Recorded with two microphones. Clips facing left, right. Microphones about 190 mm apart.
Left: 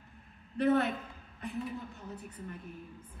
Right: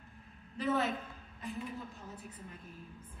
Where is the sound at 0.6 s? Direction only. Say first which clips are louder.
Left 5 dB; 60° left (ahead or behind).